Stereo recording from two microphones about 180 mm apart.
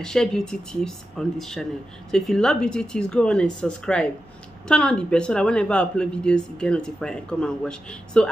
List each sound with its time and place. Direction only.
0.0 s speech: 5° left (ahead or behind)